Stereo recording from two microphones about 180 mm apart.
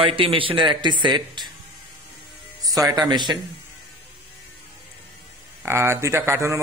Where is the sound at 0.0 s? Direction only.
30° right (ahead or behind).